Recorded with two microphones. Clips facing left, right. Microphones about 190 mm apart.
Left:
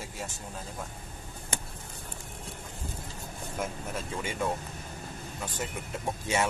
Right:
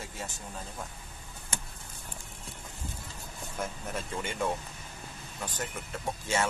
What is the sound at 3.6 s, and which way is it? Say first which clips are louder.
Speech: left 1 dB; centre (ahead or behind).